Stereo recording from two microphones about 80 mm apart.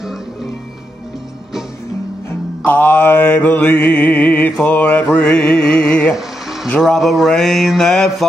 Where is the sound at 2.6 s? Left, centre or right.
Left.